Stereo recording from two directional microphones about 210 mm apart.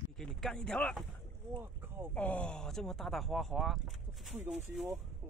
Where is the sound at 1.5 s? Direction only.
10° right (ahead or behind).